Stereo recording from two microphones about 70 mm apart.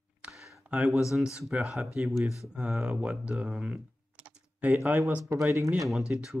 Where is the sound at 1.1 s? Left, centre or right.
Centre.